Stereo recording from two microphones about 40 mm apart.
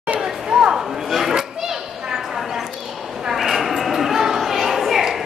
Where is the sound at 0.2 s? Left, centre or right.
Centre.